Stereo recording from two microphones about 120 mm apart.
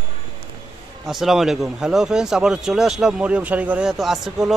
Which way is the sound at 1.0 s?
Centre (ahead or behind).